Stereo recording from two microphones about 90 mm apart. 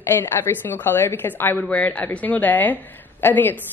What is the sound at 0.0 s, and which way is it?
A woman's voice, 30° left (ahead or behind).